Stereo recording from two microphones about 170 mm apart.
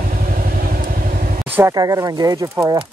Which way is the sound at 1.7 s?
20° right (ahead or behind).